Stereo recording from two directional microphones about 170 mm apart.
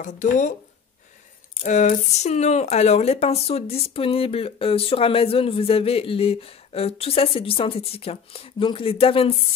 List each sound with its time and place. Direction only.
0.0 s speech: 50° left (ahead or behind)
1.6 s speech: 50° left (ahead or behind)